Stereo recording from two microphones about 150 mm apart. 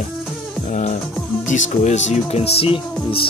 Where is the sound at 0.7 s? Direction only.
55° left (ahead or behind).